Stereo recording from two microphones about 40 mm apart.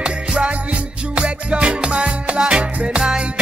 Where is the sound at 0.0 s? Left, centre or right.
Right.